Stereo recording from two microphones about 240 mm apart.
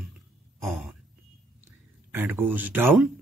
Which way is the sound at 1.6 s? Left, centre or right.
Centre.